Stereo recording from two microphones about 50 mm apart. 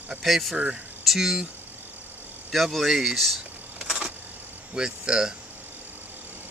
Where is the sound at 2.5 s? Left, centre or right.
Centre.